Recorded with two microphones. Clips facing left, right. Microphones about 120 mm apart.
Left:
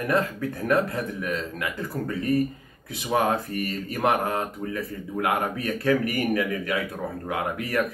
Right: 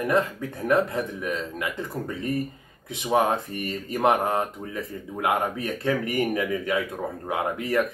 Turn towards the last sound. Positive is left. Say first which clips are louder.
# right 2 dB
turn(degrees=-25)  # may be behind; listen again after turning